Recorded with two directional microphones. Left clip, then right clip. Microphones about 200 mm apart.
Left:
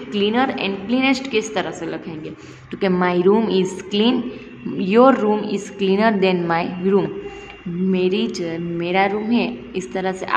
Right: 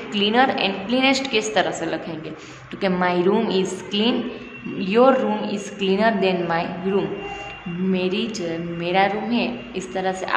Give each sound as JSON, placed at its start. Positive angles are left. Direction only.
{"t": 0.1, "sound": "a woman's voice", "side_deg": 15}